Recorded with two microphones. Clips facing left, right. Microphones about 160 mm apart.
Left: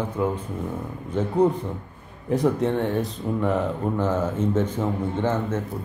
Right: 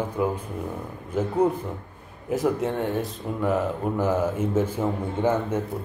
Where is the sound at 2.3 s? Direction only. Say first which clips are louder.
Left 2 dB; centre (ahead or behind).